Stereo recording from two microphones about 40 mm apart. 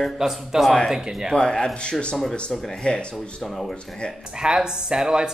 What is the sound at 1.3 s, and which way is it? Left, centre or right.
Speech, centre.